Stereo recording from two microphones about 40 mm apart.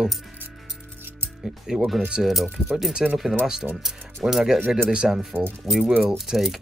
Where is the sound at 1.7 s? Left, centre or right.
Centre.